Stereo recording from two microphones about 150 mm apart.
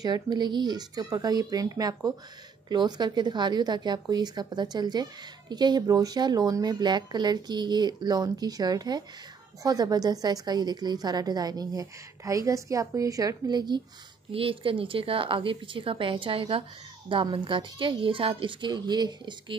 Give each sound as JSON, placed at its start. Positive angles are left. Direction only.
{"t": 0.0, "sound": "a woman's voice", "side_deg": -30}